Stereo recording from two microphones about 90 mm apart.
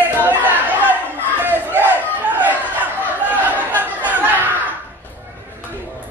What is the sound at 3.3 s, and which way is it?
Chatter, 20° right (ahead or behind).